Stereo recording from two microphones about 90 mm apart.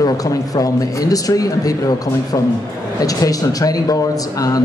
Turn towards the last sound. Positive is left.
turn(degrees=40)  # may be behind; listen again after turning